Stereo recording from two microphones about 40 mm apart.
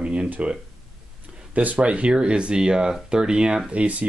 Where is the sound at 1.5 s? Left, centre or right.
Right.